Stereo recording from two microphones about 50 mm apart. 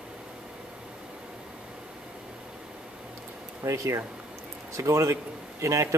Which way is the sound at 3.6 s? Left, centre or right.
Right.